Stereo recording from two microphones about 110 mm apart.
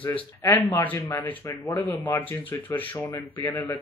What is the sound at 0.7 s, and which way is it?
Speech, 15° left (ahead or behind).